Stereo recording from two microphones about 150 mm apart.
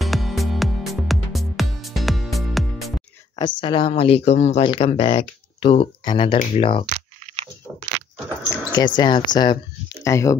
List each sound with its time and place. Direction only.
0.0 s music: centre (ahead or behind)
3.3 s speech: 30° left (ahead or behind); by 4.6 s 50° left (ahead or behind)
4.6 s speech: 35° left (ahead or behind)
7.2 s crunch: 50° right (ahead or behind)
8.7 s speech: 30° left (ahead or behind)